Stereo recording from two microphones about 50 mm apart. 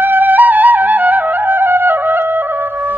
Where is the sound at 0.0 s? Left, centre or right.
Right.